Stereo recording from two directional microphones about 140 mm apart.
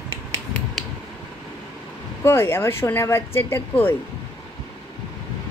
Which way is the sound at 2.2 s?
15° left (ahead or behind).